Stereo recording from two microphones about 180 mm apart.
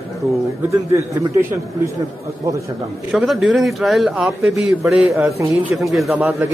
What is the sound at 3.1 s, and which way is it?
Speech, centre (ahead or behind).